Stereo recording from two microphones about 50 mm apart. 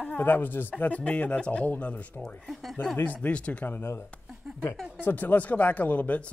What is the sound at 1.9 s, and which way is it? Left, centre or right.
Speech, left.